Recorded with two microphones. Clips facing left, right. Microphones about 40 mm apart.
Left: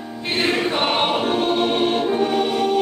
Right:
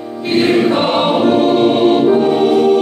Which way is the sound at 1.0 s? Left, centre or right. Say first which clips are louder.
Right 8 dB; centre.